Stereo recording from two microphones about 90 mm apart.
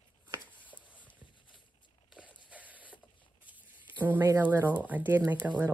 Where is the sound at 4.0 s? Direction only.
20° right (ahead or behind).